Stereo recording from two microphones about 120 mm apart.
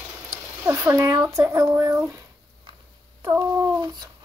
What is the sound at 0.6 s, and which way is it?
A child's voice, 25° right (ahead or behind).